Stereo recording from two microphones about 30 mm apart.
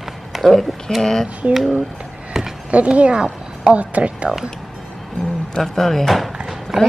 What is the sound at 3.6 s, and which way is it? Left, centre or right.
Speech, right.